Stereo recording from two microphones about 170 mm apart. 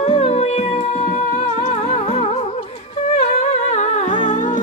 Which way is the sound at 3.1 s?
40° left (ahead or behind).